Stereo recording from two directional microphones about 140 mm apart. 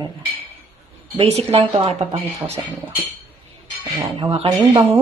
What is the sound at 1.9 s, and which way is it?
Speech, 50° right (ahead or behind).